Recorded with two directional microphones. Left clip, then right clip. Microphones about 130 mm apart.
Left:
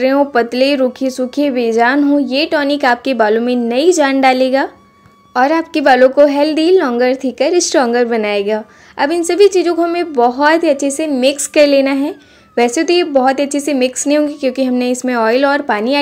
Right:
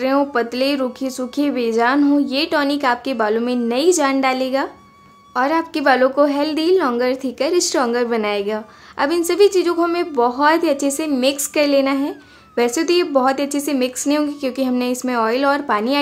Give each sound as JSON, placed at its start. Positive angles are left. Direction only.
{"t": 0.0, "sound": "a woman's voice", "side_deg": 20}